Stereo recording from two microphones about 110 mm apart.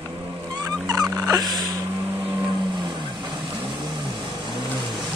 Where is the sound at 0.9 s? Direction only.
35° right (ahead or behind).